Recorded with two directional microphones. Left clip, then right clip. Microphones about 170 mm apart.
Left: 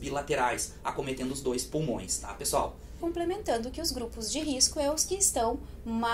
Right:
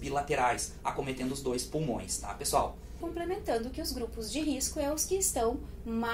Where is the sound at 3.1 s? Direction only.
45° left (ahead or behind).